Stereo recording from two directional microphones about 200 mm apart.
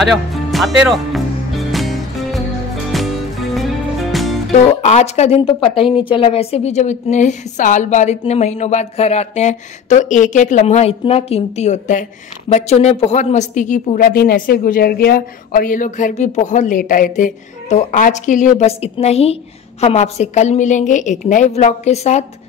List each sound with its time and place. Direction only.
0.0 s speech: centre (ahead or behind)
1.7 s music: centre (ahead or behind)
4.1 s music: centre (ahead or behind)
4.8 s a woman's voice: 35° left (ahead or behind)
5.8 s speech: centre (ahead or behind)
6.0 s a woman's voice: 25° left (ahead or behind)